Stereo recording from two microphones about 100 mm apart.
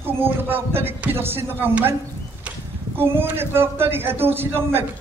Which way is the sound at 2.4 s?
20° right (ahead or behind).